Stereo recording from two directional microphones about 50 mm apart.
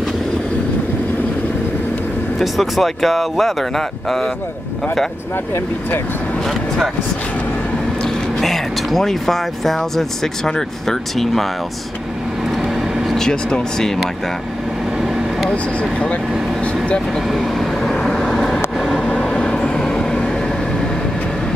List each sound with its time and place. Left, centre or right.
2.3 s speech: centre
8.0 s speech: centre
12.4 s vehicle: centre
13.1 s speech: centre
15.0 s vehicle: centre
15.5 s speech: left
17.3 s speech: centre
17.8 s vehicle: centre
18.8 s train: centre